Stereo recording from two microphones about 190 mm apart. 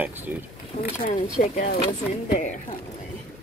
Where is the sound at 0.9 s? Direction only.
40° left (ahead or behind).